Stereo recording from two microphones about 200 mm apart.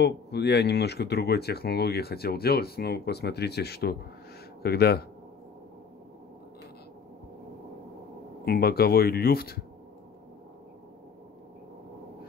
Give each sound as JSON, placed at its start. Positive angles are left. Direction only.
{"t": 0.0, "sound": "speech", "side_deg": 55}
{"t": 8.5, "sound": "speech", "side_deg": 50}